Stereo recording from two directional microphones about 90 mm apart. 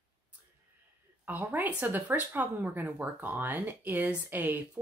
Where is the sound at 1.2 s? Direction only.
20° right (ahead or behind).